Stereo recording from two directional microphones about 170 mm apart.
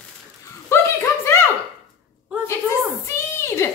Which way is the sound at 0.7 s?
15° left (ahead or behind).